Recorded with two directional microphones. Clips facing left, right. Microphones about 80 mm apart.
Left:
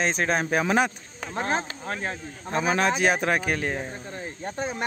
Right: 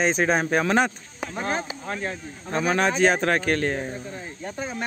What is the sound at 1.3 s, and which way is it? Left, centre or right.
Speech, left.